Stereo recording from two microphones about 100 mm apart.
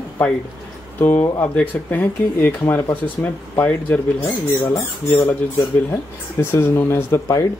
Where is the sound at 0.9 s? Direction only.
20° left (ahead or behind).